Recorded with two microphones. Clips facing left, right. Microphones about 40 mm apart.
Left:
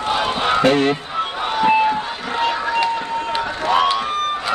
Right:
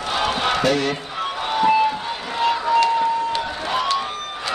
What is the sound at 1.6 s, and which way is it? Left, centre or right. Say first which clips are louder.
Run: left 1 dB; left.